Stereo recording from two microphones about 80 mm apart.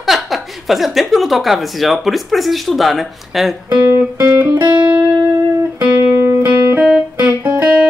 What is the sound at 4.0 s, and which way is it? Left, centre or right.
Music, right.